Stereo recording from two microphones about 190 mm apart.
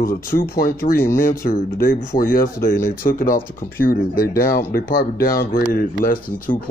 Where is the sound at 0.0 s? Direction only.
50° left (ahead or behind).